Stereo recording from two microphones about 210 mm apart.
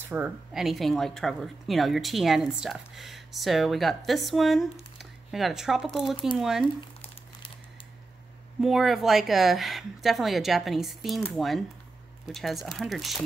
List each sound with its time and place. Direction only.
0.0 s speech: 10° right (ahead or behind)
4.9 s a sound: centre (ahead or behind)
6.3 s speech: centre (ahead or behind)
8.5 s speech: centre (ahead or behind)